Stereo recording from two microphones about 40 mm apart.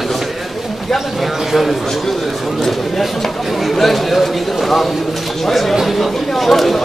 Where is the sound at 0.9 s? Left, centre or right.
Centre.